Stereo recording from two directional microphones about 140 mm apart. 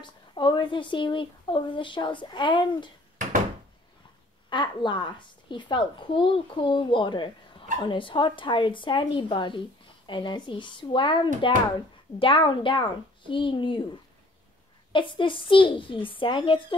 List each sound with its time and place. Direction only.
0.0 s a woman's voice: 35° left (ahead or behind)
4.5 s a woman's voice: 35° left (ahead or behind)
14.9 s a woman's voice: 35° left (ahead or behind)